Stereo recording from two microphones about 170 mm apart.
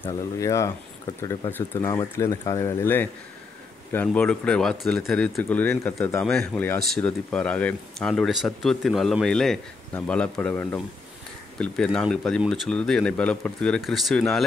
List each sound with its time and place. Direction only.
0.0 s speech: 20° left (ahead or behind); by 14.4 s centre (ahead or behind)